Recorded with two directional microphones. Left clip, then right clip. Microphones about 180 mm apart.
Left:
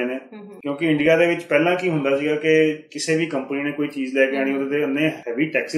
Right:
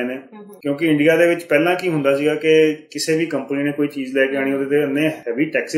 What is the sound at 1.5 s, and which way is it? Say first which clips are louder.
Speech: right 2 dB; 35° right (ahead or behind).